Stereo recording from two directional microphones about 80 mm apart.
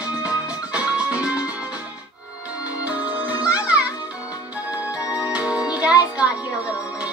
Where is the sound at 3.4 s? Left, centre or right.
Centre.